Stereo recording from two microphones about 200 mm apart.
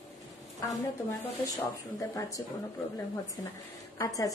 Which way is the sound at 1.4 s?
15° left (ahead or behind).